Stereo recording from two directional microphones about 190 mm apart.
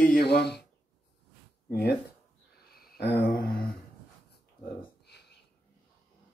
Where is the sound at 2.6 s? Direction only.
55° left (ahead or behind).